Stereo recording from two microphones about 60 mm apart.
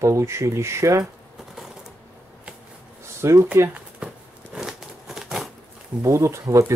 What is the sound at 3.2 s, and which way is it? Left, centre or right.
Speech, right.